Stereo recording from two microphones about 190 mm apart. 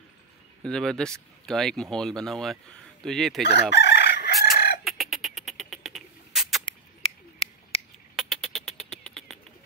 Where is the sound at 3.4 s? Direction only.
65° left (ahead or behind).